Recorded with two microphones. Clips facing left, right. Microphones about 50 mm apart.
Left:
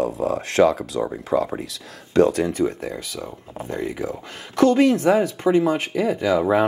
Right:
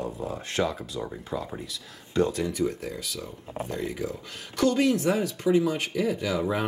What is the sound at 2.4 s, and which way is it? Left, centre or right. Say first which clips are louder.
Speech: left 6 dB; left.